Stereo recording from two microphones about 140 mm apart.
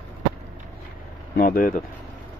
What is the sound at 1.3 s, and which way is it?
Speech, 90° left.